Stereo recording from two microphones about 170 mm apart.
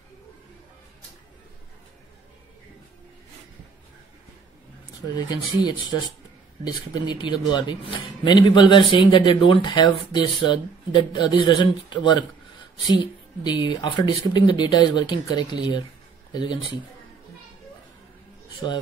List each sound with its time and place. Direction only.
5.0 s speech: 25° left (ahead or behind)
13.4 s speech: 25° left (ahead or behind)